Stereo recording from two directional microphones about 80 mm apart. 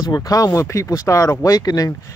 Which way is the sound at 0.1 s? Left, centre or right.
Left.